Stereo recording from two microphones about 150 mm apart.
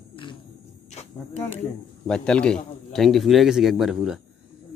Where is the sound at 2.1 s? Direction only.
5° left (ahead or behind).